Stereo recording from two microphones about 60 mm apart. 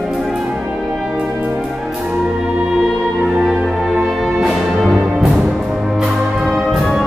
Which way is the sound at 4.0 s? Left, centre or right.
Centre.